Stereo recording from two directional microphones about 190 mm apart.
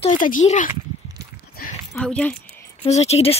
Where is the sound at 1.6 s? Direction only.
50° left (ahead or behind).